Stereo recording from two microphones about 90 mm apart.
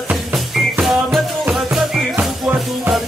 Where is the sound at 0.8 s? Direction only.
5° right (ahead or behind).